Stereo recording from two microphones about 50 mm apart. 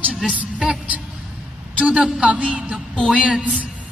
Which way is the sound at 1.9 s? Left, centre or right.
Centre.